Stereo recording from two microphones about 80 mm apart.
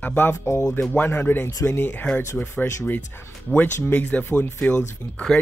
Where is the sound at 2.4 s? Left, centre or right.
Left.